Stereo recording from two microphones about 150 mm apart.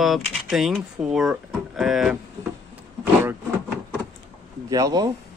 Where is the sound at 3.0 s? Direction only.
15° right (ahead or behind).